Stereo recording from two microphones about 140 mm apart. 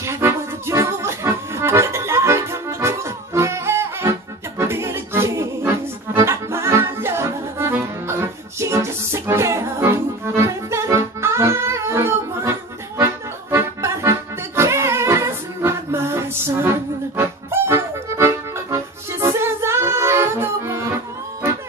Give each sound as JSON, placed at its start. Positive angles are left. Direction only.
{"t": 0.0, "sound": "accordion", "side_deg": -20}
{"t": 4.6, "sound": "music", "side_deg": -20}
{"t": 17.2, "sound": "accordion", "side_deg": -20}